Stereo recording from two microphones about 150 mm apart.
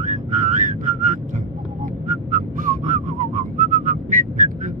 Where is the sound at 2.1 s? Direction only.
55° right (ahead or behind).